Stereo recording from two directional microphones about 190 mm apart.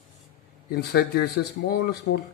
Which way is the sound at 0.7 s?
60° left (ahead or behind).